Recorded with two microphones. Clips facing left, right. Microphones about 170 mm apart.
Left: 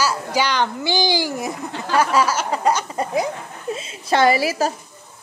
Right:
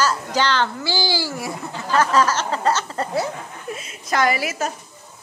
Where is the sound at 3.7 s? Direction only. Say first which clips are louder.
Left 5 dB; 25° left (ahead or behind).